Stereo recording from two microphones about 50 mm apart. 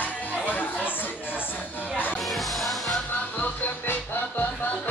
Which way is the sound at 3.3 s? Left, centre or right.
Left.